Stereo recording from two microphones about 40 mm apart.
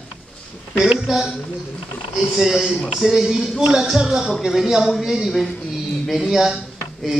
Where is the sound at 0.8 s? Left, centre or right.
Centre.